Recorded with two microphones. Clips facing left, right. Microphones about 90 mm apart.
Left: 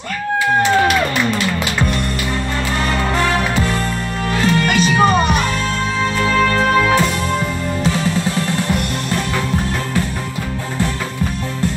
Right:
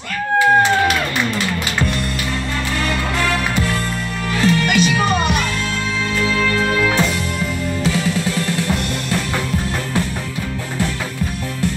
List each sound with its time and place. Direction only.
4.3 s music: 35° left (ahead or behind)